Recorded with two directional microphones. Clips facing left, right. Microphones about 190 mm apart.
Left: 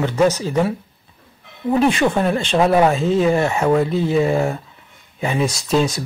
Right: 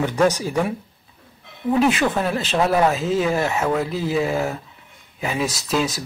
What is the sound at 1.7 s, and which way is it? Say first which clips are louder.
Speech: left 2 dB; centre (ahead or behind).